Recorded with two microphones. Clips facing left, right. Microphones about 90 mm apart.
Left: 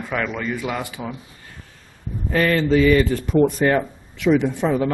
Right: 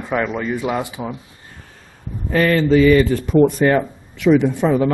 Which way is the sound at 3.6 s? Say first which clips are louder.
Right 3 dB; 70° right (ahead or behind).